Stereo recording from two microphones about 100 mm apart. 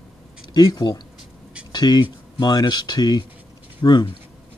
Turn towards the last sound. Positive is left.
turn(degrees=50)  # may be behind; listen again after turning